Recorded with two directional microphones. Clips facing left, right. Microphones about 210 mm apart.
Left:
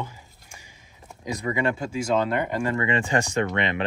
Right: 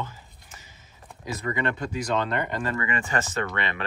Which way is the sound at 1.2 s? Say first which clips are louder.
Left 3 dB; 15° left (ahead or behind).